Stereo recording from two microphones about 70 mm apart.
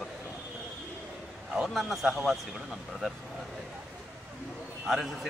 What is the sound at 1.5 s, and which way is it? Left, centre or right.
A man's voice, centre.